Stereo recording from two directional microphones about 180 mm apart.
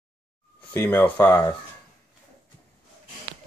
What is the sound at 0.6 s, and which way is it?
Speech, 10° left (ahead or behind).